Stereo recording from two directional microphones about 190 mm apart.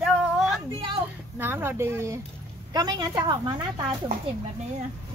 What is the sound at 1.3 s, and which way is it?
A woman's voice, 10° right (ahead or behind).